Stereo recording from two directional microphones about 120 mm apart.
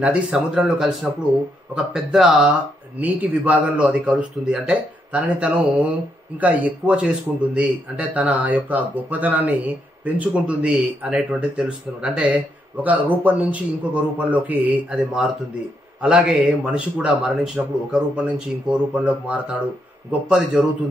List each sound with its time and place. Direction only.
0.0 s speech: 10° right (ahead or behind)